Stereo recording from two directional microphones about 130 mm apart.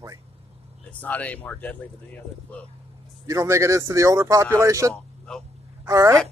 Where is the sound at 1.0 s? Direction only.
10° left (ahead or behind).